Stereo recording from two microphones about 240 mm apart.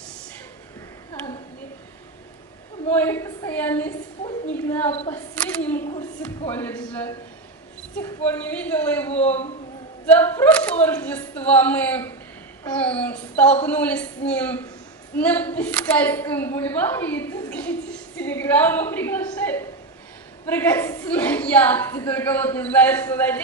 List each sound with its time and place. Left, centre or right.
2.9 s a woman's voice: centre
4.2 s a woman's voice: centre
5.1 s a woman's voice: centre
9.2 s a woman's voice: left
10.1 s a woman's voice: centre